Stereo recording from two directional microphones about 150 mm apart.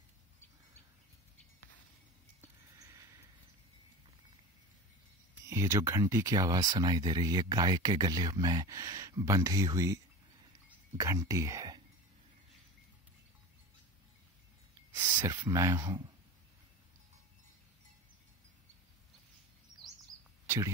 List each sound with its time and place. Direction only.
2.4 s a sound: 20° right (ahead or behind)
5.5 s speech: 20° right (ahead or behind)
11.0 s speech: 20° right (ahead or behind)
15.0 s speech: 20° right (ahead or behind)
20.4 s cricket: 20° right (ahead or behind)